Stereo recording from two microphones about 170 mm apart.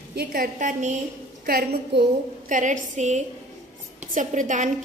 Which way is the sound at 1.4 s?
60° right (ahead or behind).